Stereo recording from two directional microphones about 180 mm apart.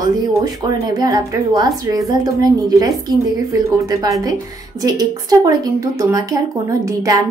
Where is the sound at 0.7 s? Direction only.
20° right (ahead or behind).